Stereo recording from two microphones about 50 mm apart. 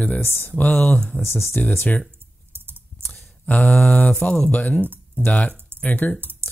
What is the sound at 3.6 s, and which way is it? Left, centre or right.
Speech, left.